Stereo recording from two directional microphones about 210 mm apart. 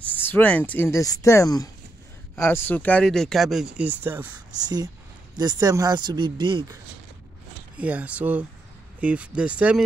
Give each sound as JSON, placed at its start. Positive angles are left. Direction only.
{"t": 0.0, "sound": "speech", "side_deg": 10}
{"t": 7.7, "sound": "speech", "side_deg": -5}